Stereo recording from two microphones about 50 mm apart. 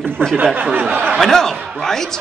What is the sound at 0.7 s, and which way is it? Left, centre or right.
Speech, right.